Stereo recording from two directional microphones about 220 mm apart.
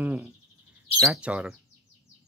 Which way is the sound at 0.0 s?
10° right (ahead or behind).